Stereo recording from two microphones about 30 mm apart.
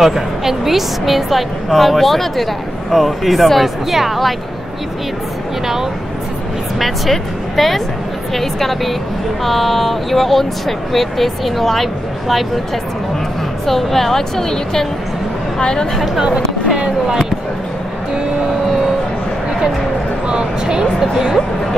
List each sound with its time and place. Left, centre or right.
0.0 s a woman's voice: centre
6.8 s a woman's voice: centre
13.7 s a woman's voice: centre; by 15.9 s left
16.3 s speech: right
20.2 s speech: right